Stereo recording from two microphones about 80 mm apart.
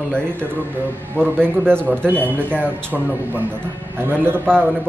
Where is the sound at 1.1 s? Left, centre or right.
Right.